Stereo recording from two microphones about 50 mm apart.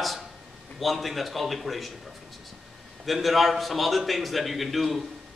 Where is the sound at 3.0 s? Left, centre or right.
Centre.